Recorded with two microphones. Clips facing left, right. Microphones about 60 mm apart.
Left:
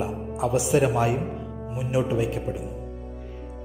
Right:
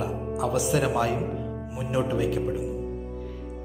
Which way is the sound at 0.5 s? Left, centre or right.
Left.